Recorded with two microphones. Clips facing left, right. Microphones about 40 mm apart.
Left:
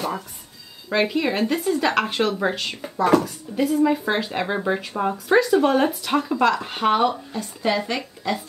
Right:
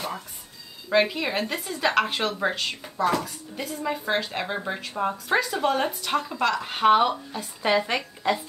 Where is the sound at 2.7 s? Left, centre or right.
Centre.